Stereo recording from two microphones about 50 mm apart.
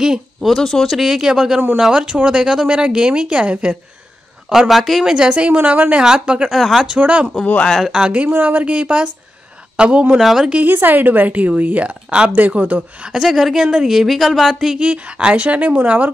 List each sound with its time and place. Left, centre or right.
0.0 s speech: centre
0.5 s speech: centre
0.9 s speech: centre
4.5 s speech: centre
5.0 s speech: centre
5.6 s speech: right
6.0 s speech: centre
6.5 s speech: centre
7.0 s speech: right
8.6 s speech: right
10.2 s speech: centre
10.6 s a woman's voice: right
13.1 s speech: centre
14.8 s speech: right